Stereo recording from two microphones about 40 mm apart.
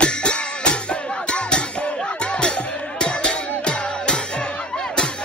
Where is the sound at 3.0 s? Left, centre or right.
Left.